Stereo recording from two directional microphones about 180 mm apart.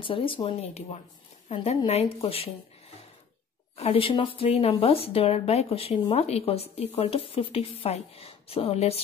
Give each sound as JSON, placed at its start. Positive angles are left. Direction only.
{"t": 0.0, "sound": "speech", "side_deg": 30}
{"t": 3.7, "sound": "speech", "side_deg": 30}